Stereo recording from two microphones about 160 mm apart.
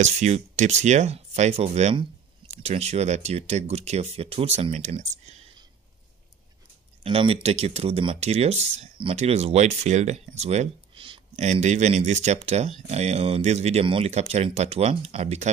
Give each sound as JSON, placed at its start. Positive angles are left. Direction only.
{"t": 0.0, "sound": "speech", "side_deg": -45}
{"t": 7.0, "sound": "speech", "side_deg": -35}